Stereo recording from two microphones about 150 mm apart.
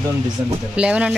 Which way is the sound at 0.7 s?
5° right (ahead or behind).